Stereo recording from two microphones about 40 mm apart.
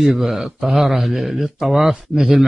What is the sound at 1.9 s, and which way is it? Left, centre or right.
Speech, centre.